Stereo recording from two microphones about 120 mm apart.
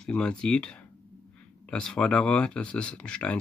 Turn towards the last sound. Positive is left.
turn(degrees=10)  # may be behind; listen again after turning